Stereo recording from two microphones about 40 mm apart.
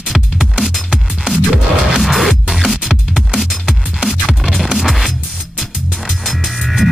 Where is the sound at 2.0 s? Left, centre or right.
Centre.